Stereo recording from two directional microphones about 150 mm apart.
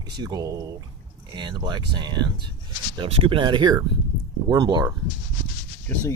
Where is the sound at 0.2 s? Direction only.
25° right (ahead or behind).